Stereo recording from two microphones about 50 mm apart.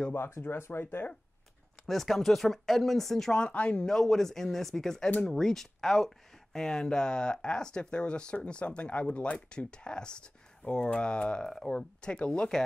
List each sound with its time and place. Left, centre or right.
0.1 s speech: left
1.9 s speech: centre
3.3 s speech: left
3.8 s speech: centre